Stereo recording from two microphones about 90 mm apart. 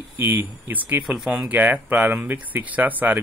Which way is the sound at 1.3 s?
15° right (ahead or behind).